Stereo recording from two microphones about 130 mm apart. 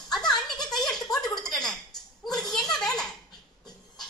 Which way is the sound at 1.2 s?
30° left (ahead or behind).